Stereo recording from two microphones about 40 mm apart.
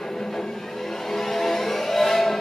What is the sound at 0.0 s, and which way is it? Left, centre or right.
Vehicle, centre.